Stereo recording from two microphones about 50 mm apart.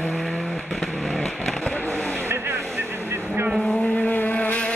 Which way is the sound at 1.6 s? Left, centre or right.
Left.